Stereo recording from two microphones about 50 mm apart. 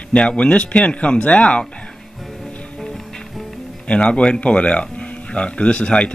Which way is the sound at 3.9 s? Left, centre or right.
Left.